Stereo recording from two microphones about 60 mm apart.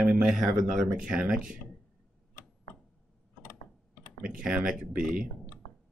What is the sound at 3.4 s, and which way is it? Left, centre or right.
Typing, left.